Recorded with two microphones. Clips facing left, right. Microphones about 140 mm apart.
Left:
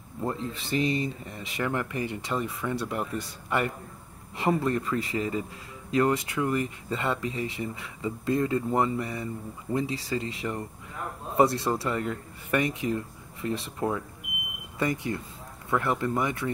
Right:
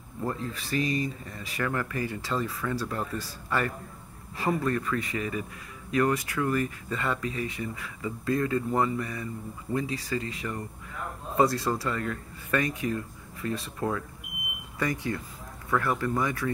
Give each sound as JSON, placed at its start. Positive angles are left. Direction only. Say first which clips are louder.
{"t": 0.2, "sound": "speech", "louder": "left 1 dB", "side_deg": 25}